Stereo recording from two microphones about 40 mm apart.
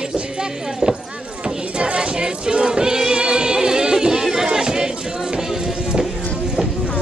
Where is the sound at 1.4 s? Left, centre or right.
Right.